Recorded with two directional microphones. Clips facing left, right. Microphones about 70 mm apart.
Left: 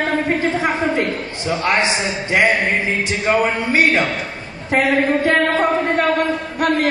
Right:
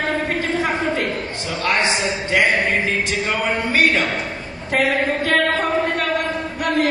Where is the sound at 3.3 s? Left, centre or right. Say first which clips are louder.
Left 8 dB; left.